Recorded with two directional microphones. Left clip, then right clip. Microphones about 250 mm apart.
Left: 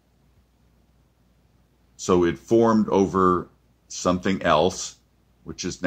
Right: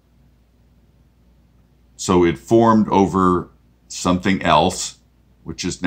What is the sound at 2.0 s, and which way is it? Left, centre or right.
Speech, centre.